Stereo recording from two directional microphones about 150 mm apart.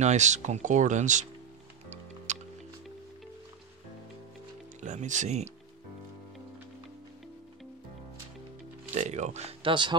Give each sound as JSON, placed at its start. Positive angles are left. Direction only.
{"t": 0.0, "sound": "speech", "side_deg": -50}
{"t": 2.3, "sound": "music", "side_deg": -55}
{"t": 4.7, "sound": "speech", "side_deg": -50}
{"t": 8.9, "sound": "speech", "side_deg": -50}